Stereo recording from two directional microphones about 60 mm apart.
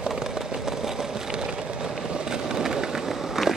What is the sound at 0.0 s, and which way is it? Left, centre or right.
Vehicle, centre.